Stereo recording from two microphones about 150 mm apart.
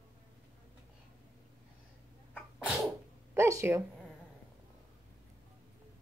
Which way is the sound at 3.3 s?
15° right (ahead or behind).